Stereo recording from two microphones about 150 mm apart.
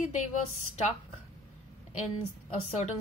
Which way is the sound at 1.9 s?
50° left (ahead or behind).